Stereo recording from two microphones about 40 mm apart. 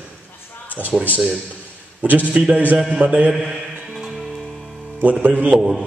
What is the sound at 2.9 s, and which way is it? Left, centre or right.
Speech, right.